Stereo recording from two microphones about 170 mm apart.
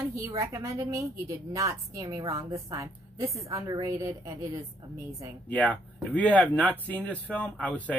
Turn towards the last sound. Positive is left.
turn(degrees=10)  # may be behind; listen again after turning